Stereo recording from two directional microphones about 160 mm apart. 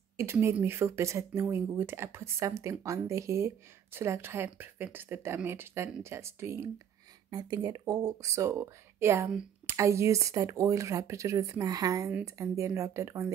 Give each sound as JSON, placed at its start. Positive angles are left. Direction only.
{"t": 0.2, "sound": "speech", "side_deg": -15}